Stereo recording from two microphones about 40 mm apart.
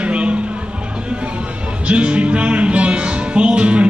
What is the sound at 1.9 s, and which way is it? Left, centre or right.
Music, right.